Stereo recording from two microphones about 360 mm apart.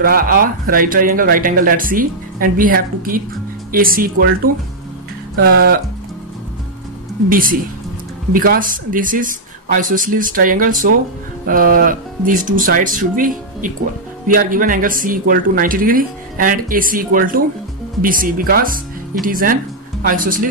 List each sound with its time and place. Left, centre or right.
0.0 s speech: right
5.3 s speech: right
7.2 s speech: right